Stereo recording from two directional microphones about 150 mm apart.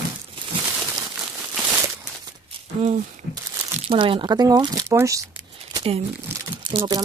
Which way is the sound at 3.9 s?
35° right (ahead or behind).